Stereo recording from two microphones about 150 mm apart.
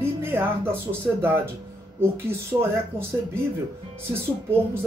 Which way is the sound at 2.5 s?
15° right (ahead or behind).